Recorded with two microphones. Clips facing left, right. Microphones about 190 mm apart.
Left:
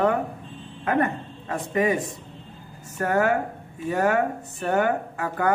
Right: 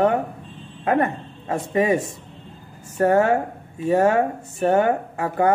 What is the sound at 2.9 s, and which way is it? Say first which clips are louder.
A woman's voice: right 5 dB; 25° right (ahead or behind).